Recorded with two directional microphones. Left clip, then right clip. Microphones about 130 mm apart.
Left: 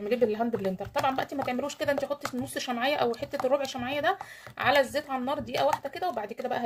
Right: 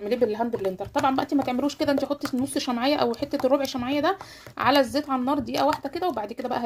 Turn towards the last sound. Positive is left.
turn(degrees=-40)  # may be behind; listen again after turning